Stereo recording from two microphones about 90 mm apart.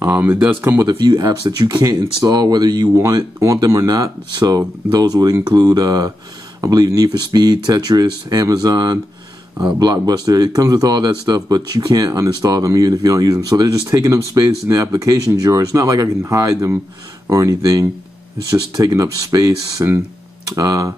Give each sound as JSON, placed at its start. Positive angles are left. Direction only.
{"t": 0.0, "sound": "speech", "side_deg": -25}
{"t": 0.8, "sound": "speech", "side_deg": -50}
{"t": 3.0, "sound": "speech", "side_deg": -35}
{"t": 10.0, "sound": "speech", "side_deg": -45}